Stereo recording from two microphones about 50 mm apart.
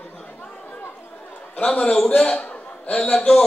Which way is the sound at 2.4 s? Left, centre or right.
Left.